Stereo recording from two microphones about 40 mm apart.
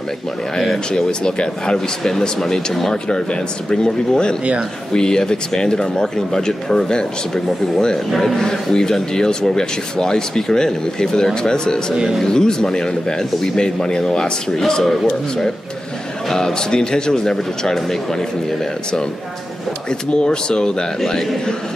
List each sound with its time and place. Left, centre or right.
0.6 s speech: centre
2.9 s speech: centre
8.1 s a man's voice: centre
8.4 s speech: centre
11.9 s speech: centre
12.2 s speech: centre
14.5 s speech: centre
19.9 s speech: left
21.0 s speech: centre